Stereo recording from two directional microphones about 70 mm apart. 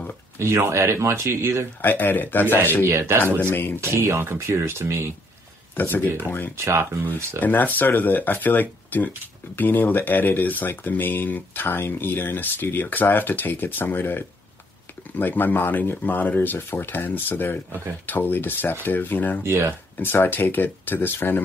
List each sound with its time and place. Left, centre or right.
0.4 s speech: right
1.8 s speech: left
2.8 s speech: right
3.5 s speech: left
3.8 s speech: right
5.8 s speech: left
6.5 s speech: right
7.3 s speech: left
19.4 s speech: right
20.0 s speech: left